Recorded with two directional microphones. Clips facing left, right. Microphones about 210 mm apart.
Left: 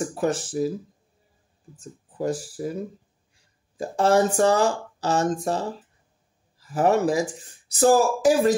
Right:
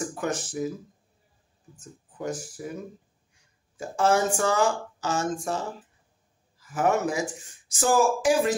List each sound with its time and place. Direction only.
0.1 s speech: 35° left (ahead or behind)
1.8 s speech: 35° left (ahead or behind)